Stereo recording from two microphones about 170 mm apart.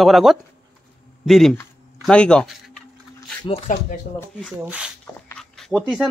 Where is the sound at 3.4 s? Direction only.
35° left (ahead or behind).